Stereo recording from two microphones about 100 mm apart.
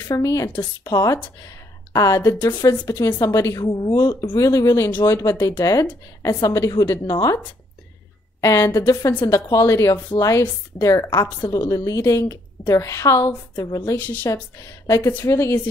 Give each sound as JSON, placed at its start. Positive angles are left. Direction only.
{"t": 0.1, "sound": "a woman's voice", "side_deg": 35}
{"t": 4.4, "sound": "speech", "side_deg": 35}
{"t": 8.4, "sound": "speech", "side_deg": 30}
{"t": 13.9, "sound": "speech", "side_deg": 15}
{"t": 14.3, "sound": "a woman's voice", "side_deg": 35}